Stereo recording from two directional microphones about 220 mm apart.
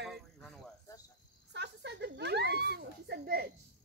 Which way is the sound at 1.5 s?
50° right (ahead or behind).